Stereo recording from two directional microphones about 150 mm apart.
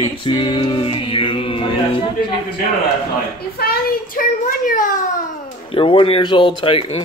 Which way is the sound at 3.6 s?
80° left.